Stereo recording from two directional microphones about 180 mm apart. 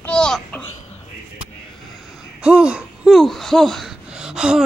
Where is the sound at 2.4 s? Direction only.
5° right (ahead or behind).